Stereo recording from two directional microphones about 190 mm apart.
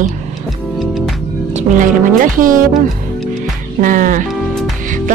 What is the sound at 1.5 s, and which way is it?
Speech, 45° right (ahead or behind).